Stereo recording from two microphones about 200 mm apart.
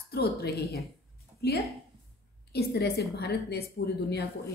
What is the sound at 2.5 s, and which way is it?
A woman's voice, 50° left (ahead or behind).